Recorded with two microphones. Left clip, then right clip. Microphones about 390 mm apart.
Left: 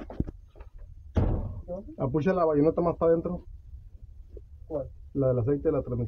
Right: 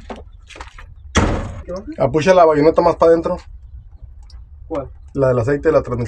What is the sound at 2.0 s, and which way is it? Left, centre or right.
Speech, left.